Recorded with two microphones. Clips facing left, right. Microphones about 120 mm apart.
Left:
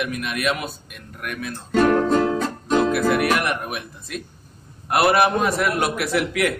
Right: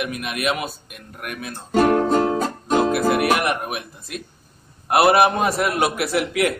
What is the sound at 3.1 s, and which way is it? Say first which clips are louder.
Speech: right 1 dB; 10° right (ahead or behind).